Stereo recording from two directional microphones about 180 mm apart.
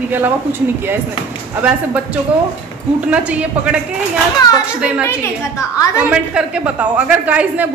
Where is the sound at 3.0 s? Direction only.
5° right (ahead or behind).